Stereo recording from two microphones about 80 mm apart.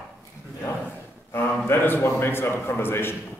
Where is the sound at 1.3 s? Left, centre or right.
Left.